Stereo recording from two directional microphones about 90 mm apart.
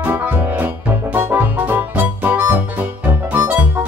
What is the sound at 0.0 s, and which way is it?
Music, 20° right (ahead or behind).